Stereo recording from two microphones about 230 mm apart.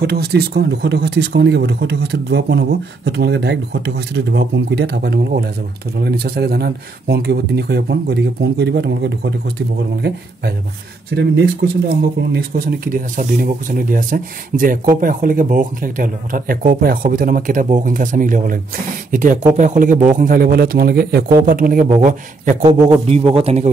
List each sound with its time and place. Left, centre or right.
0.0 s speech: right
11.1 s speech: right
22.6 s a man's voice: centre